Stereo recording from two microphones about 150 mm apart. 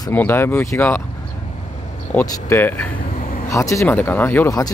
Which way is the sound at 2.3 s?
15° left (ahead or behind).